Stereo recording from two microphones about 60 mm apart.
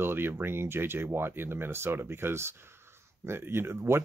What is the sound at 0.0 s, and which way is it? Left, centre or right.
Speech, right.